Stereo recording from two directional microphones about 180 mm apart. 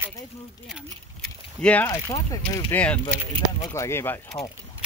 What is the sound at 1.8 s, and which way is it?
Speech, 20° left (ahead or behind).